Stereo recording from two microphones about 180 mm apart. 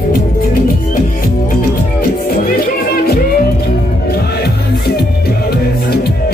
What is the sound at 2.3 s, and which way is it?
Music, 55° left (ahead or behind).